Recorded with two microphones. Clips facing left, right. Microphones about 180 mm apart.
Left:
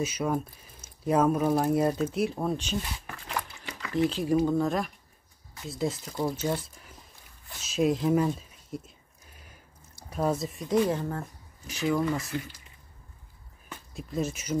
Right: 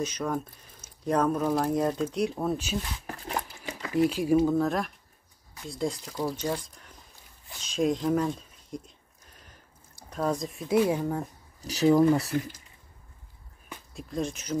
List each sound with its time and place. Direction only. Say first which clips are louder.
0.0 s speech: left 1 dB; 10° left (ahead or behind)
3.1 s a sound: right 2 dB; 35° right (ahead or behind)
4.1 s speech: right 2 dB; 10° right (ahead or behind)
7.5 s a sound: left 1 dB; 5° left (ahead or behind)
10.0 s speech: left 1 dB; 10° left (ahead or behind); by 11.2 s 10° right (ahead or behind)
11.6 s speech: right 7 dB; 35° right (ahead or behind)
13.9 s speech: even; 5° left (ahead or behind)